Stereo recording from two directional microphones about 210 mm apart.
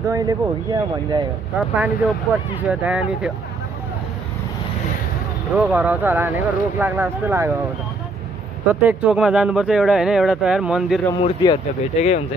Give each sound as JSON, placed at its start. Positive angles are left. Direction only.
{"t": 0.1, "sound": "speech", "side_deg": -15}
{"t": 1.6, "sound": "speech", "side_deg": -5}
{"t": 5.5, "sound": "speech", "side_deg": -5}
{"t": 8.6, "sound": "speech", "side_deg": -5}
{"t": 11.1, "sound": "speech", "side_deg": 25}